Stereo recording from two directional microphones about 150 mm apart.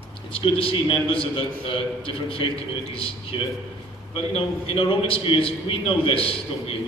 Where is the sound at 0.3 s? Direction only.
35° left (ahead or behind).